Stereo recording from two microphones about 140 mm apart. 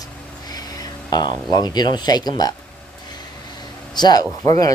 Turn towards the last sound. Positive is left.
turn(degrees=25)  # may be behind; listen again after turning